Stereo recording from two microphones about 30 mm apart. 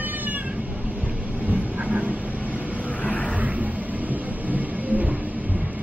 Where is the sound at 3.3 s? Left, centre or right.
Right.